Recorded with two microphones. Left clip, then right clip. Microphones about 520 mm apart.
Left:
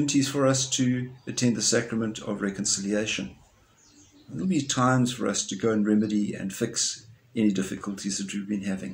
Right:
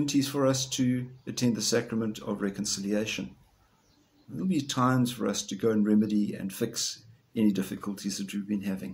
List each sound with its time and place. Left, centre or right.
0.0 s speech: right
4.4 s speech: right